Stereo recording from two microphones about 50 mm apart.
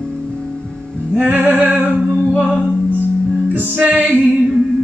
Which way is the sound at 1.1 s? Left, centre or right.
Right.